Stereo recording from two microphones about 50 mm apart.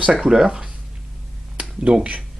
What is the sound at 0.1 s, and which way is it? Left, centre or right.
Speech, centre.